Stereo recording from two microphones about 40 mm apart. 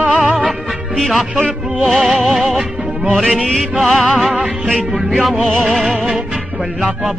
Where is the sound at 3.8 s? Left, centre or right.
Centre.